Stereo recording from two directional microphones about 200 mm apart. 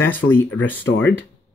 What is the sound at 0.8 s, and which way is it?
Speech, 65° left (ahead or behind).